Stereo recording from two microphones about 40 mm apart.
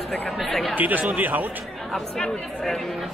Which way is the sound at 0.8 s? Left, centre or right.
Right.